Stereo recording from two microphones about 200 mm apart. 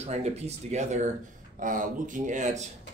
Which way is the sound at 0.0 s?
35° right (ahead or behind).